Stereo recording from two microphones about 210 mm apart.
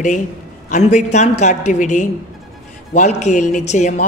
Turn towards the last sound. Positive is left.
turn(degrees=35)  # may be behind; listen again after turning